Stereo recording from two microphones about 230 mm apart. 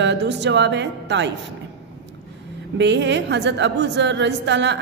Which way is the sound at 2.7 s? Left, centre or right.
Right.